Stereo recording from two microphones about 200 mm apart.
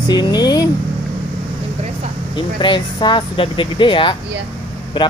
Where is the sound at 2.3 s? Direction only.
25° left (ahead or behind).